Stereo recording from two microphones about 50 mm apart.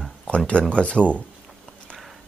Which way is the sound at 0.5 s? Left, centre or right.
Left.